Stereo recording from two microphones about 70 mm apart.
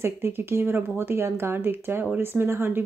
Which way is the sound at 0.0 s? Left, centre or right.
Right.